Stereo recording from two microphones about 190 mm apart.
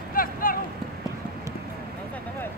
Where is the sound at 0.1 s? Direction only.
50° left (ahead or behind).